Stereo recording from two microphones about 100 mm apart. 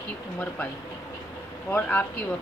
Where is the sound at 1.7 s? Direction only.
20° left (ahead or behind).